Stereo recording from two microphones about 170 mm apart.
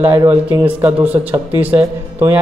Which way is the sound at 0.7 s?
10° right (ahead or behind).